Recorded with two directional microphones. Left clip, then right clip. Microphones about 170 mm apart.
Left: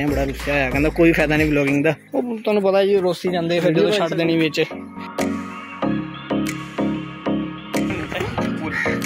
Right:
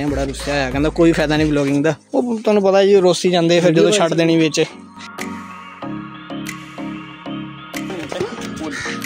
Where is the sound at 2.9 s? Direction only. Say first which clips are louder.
Right 6 dB; 45° right (ahead or behind); by 4.6 s 25° right (ahead or behind).